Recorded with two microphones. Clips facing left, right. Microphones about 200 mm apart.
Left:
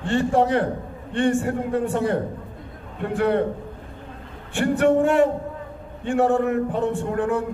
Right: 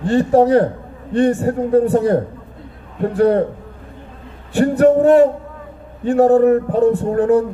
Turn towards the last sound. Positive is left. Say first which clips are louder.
# right 9 dB
turn(degrees=-35)  # may be behind; listen again after turning